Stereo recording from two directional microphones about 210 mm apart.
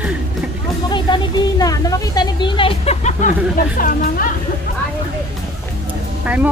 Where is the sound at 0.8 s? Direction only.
20° left (ahead or behind); by 4.3 s 40° left (ahead or behind).